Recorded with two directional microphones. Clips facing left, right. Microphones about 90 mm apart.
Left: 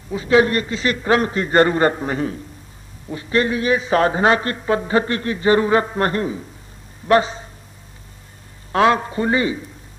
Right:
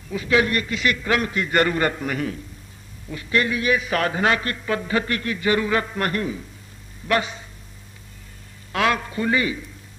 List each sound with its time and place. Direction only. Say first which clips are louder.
0.1 s a man's voice: left 5 dB; 30° left (ahead or behind)
8.7 s a man's voice: left 6 dB; 30° left (ahead or behind)